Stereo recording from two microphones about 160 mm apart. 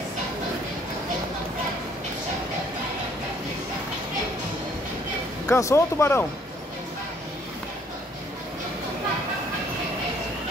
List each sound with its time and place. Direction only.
5.5 s speech: 20° left (ahead or behind)